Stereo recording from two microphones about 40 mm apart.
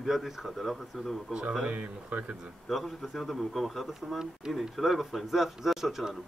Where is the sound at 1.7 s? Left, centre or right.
Right.